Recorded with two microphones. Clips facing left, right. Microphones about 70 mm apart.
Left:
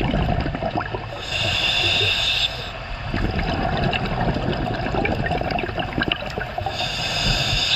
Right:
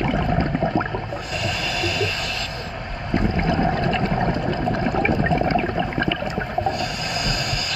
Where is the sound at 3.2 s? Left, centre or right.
Centre.